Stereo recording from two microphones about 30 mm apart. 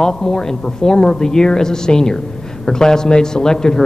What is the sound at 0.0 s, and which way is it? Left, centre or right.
A man's voice, left.